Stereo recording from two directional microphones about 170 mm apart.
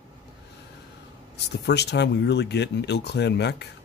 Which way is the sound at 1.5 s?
80° left.